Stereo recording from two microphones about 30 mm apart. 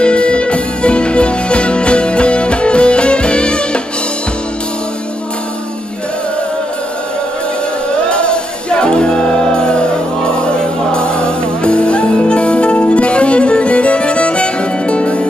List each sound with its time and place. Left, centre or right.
0.0 s music: left
8.1 s music: left